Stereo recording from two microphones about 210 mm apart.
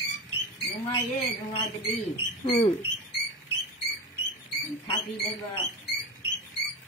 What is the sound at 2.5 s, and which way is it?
Speech, 30° left (ahead or behind).